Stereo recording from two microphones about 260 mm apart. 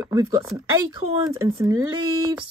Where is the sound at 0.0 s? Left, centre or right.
Centre.